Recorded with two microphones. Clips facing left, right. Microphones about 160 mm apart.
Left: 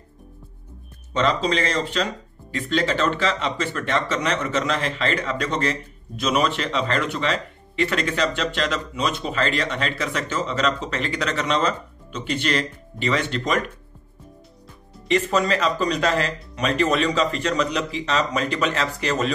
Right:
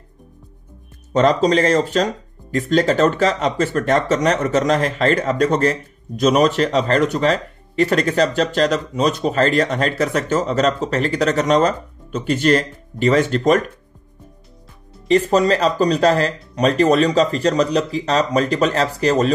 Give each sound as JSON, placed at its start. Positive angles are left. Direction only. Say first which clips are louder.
{"t": 1.1, "sound": "speech", "louder": "right 7 dB", "side_deg": -40}
{"t": 15.0, "sound": "speech", "louder": "right 6 dB", "side_deg": -35}